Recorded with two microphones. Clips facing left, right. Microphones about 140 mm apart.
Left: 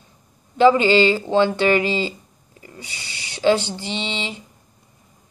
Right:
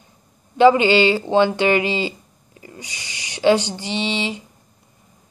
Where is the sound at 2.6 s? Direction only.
20° right (ahead or behind).